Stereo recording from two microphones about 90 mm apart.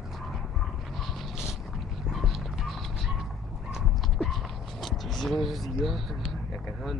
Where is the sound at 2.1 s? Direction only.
Centre (ahead or behind).